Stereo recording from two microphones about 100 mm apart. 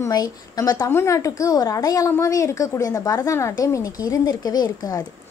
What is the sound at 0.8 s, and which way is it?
A woman's voice, 25° left (ahead or behind).